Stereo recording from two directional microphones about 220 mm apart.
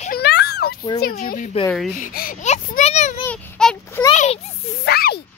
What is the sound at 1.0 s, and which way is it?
Speech, 40° left (ahead or behind).